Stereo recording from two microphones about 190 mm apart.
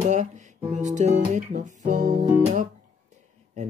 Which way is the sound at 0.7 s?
40° right (ahead or behind).